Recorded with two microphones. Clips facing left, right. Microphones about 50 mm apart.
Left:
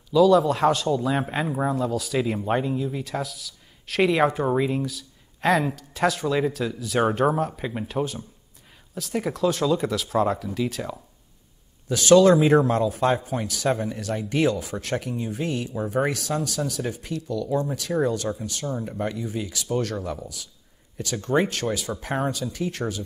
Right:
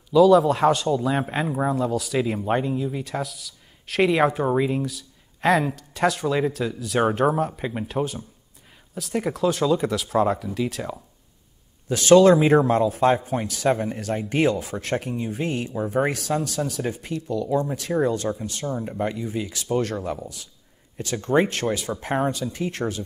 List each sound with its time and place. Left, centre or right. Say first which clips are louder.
0.1 s speech: right 2 dB; centre
11.9 s speech: right 1 dB; right